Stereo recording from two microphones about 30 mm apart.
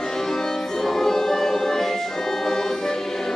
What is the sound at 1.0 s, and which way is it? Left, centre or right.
Music, centre.